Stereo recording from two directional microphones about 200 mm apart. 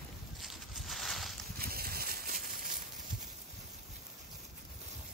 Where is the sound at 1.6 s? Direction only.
50° right (ahead or behind).